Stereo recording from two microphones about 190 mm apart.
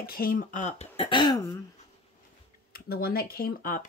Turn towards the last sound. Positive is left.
turn(degrees=45)  # may be behind; listen again after turning